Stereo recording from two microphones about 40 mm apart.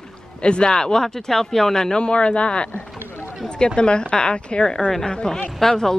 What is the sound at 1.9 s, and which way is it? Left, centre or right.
Speech, left.